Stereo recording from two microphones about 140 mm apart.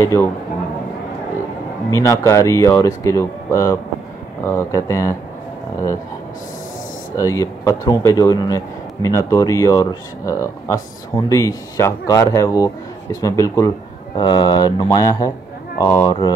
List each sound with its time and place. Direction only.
0.0 s speech: 20° left (ahead or behind)
1.9 s speech: 20° left (ahead or behind)
7.2 s speech: 25° left (ahead or behind)
16.1 s mantra: 30° left (ahead or behind)